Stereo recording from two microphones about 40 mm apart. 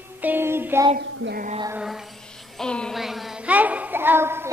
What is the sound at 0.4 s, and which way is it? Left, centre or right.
Child singing, right.